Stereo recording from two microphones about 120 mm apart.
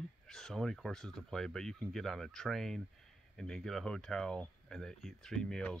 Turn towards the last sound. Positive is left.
turn(degrees=10)  # may be behind; listen again after turning